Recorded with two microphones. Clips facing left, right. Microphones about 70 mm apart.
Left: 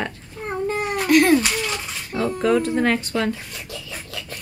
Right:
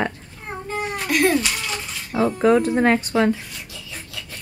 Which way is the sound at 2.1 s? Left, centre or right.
Centre.